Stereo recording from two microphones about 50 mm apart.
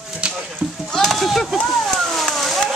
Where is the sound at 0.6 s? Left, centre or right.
Right.